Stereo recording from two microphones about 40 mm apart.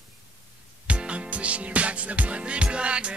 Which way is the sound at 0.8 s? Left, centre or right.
Right.